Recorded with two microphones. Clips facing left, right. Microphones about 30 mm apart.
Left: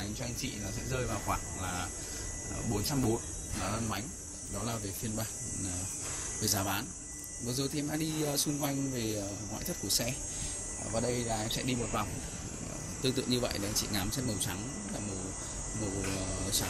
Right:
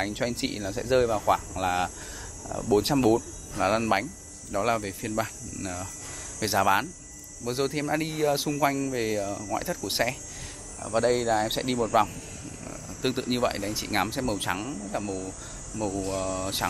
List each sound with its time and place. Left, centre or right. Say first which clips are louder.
0.0 s speech: right 10 dB; right
2.5 s speech: right 11 dB; right
3.6 s a man's voice: right 13 dB; right
4.7 s speech: right 9 dB; right
8.5 s speech: right 8 dB; right
9.0 s speech: right 8 dB; centre
11.0 s speech: right 10 dB; right
11.3 s speech: right 8 dB; right
12.6 s speech: right 5 dB; centre
14.5 s speech: right 10 dB; right
14.9 s speech: right 9 dB; right
15.9 s speech: right 8 dB; centre